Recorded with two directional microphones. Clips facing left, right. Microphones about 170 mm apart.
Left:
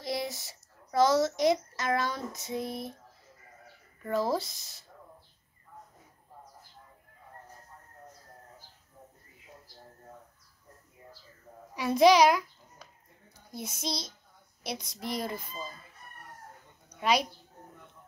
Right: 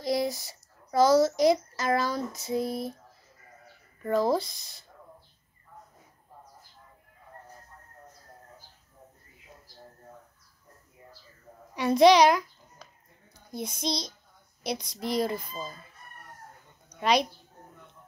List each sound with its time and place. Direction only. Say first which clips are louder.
0.0 s a child's voice: right 6 dB; centre (ahead or behind)
4.1 s speech: right 4 dB; 5° left (ahead or behind)
12.0 s a child's voice: right 2 dB; 5° left (ahead or behind)
16.9 s speech: right 3 dB; 5° left (ahead or behind)